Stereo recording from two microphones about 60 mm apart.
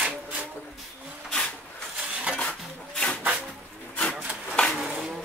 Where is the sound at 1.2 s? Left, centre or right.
Centre.